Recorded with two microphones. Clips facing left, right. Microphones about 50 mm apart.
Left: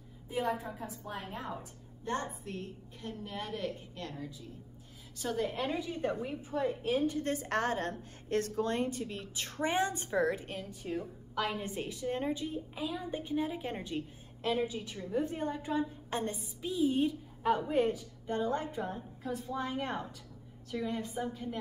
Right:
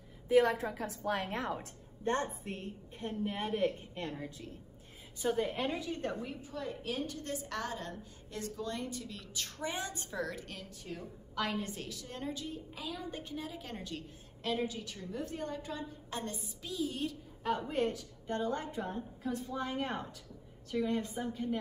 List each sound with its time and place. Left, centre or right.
0.3 s a woman's voice: right
2.0 s a woman's voice: right
5.2 s a woman's voice: centre
5.8 s a woman's voice: centre
6.1 s a woman's voice: left
7.3 s a woman's voice: left; by 11.7 s centre
11.7 s a woman's voice: left; by 21.5 s centre